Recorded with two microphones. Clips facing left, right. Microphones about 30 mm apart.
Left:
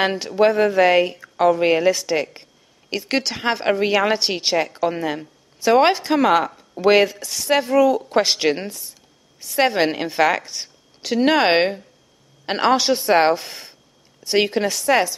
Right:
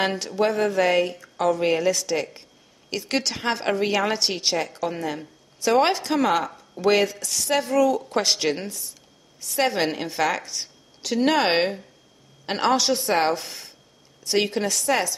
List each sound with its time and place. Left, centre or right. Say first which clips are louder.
0.0 s a woman's voice: left 5 dB; centre